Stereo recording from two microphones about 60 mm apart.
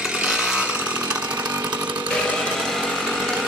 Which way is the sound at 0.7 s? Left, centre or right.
Centre.